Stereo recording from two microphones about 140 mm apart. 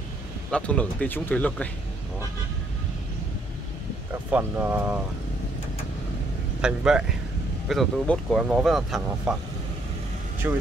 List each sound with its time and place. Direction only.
0.5 s speech: 10° left (ahead or behind)
4.1 s speech: 15° right (ahead or behind)
6.6 s speech: 5° right (ahead or behind)
10.4 s speech: 15° right (ahead or behind)